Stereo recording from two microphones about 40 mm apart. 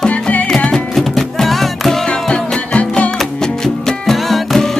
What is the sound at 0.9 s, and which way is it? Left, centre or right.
Music, centre.